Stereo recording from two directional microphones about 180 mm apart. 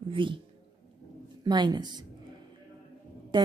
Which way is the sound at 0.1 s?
30° right (ahead or behind).